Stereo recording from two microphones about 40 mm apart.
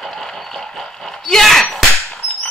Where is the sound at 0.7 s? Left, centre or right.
Centre.